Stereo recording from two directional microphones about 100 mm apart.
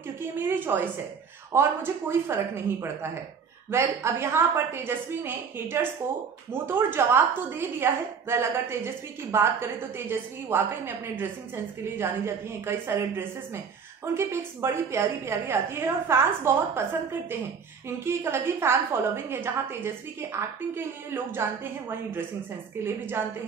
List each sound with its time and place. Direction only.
0.4 s a woman's voice: 20° right (ahead or behind)
12.0 s a woman's voice: 25° right (ahead or behind)
17.8 s a woman's voice: 25° right (ahead or behind)